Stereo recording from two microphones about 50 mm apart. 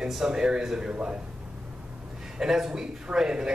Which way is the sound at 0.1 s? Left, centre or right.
Centre.